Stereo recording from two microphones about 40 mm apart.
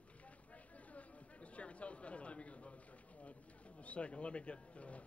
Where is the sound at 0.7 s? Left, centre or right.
Left.